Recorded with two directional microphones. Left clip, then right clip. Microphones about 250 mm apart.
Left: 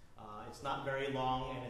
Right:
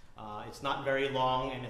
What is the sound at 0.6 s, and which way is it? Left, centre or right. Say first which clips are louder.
Speech: right 7 dB; right.